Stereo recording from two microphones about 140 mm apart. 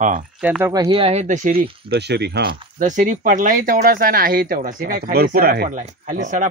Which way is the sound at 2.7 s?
65° right (ahead or behind).